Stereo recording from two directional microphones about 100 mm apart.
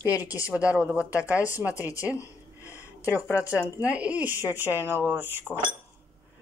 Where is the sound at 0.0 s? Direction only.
35° left (ahead or behind).